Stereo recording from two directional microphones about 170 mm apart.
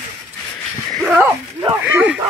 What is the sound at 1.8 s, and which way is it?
Speech, 10° right (ahead or behind).